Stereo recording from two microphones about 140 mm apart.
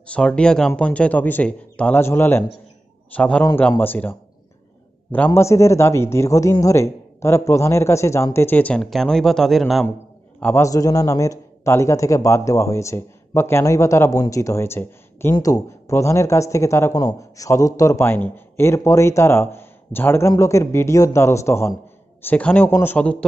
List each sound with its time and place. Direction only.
0.0 s speech: 10° left (ahead or behind)
10.4 s speech: 20° left (ahead or behind)